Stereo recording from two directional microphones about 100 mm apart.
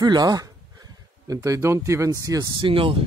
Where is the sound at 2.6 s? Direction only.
65° right (ahead or behind).